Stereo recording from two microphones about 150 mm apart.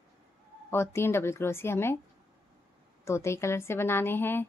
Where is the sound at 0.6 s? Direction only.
15° left (ahead or behind).